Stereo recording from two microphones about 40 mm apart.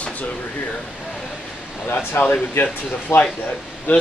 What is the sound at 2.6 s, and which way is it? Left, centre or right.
Speech, left.